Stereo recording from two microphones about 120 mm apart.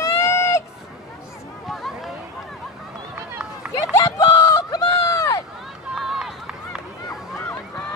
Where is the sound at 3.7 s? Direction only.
25° left (ahead or behind).